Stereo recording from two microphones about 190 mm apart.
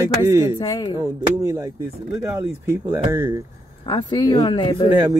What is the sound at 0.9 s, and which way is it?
Speech, 15° right (ahead or behind).